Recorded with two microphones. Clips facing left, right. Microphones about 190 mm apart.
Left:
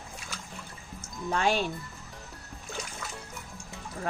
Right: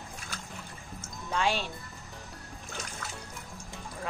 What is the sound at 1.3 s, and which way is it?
Speech, 45° left (ahead or behind).